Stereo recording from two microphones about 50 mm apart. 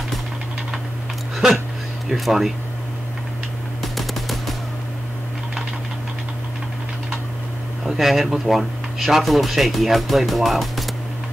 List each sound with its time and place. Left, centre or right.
2.0 s speech: centre
3.8 s machine gun: centre
7.8 s speech: centre